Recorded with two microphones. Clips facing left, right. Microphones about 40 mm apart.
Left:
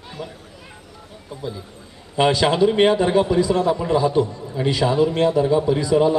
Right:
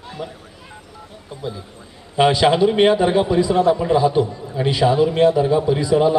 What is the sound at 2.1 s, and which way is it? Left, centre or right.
A man's voice, centre.